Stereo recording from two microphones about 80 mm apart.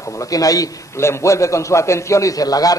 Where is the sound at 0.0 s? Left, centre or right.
Left.